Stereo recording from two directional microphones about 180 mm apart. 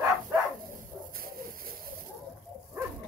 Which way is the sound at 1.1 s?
55° right (ahead or behind).